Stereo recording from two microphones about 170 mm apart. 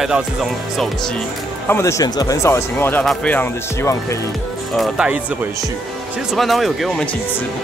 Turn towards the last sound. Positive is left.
turn(degrees=0)  # may be behind; listen again after turning